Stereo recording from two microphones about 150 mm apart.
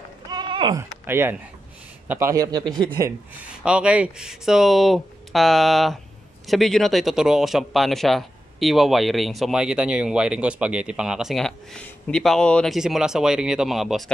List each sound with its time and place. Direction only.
0.3 s a sound: 30° right (ahead or behind)
0.7 s speech: 15° right (ahead or behind)
3.1 s speech: 10° right (ahead or behind)